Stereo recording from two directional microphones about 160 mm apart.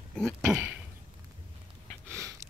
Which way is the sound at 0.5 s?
10° right (ahead or behind).